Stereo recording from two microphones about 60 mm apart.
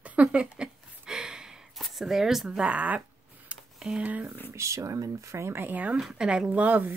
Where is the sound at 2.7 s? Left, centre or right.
Right.